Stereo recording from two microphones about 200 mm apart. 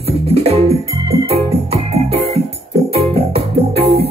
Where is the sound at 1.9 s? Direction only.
30° right (ahead or behind).